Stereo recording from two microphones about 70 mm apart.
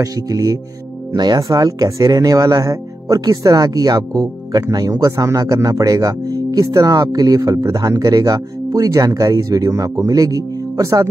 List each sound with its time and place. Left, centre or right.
0.0 s speech: right
1.1 s speech: right